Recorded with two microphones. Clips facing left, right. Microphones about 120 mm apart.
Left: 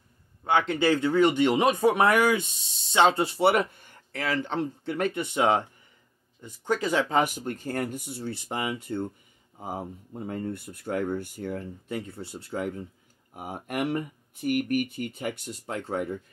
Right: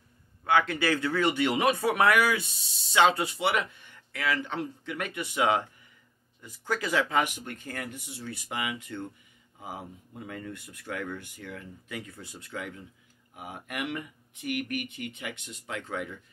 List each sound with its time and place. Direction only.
0.4 s speech: 25° left (ahead or behind); by 16.2 s 40° left (ahead or behind)